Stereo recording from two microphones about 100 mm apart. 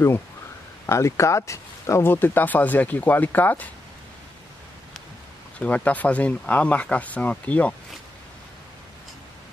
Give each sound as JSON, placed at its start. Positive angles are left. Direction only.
{"t": 0.8, "sound": "speech", "side_deg": 30}
{"t": 5.6, "sound": "speech", "side_deg": 15}